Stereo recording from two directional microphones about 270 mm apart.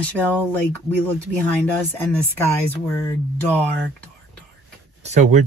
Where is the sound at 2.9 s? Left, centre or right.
Centre.